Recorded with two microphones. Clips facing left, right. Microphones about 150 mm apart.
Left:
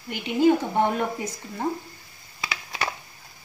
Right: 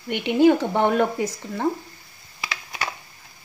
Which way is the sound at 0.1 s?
70° right (ahead or behind).